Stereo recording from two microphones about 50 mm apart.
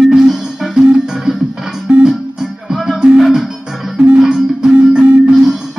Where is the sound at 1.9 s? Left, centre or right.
Right.